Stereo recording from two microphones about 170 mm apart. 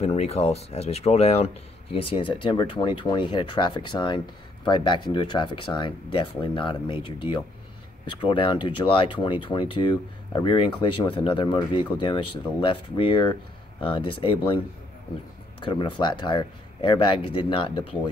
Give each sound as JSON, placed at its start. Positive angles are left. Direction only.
{"t": 0.0, "sound": "speech", "side_deg": 35}
{"t": 15.6, "sound": "speech", "side_deg": 30}